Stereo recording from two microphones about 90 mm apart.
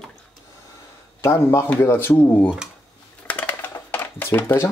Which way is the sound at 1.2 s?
30° left (ahead or behind).